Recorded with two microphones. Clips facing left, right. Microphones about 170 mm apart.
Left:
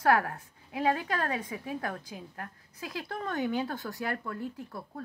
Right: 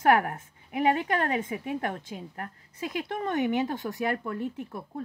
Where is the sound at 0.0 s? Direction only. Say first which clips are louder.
Right 3 dB; 20° right (ahead or behind).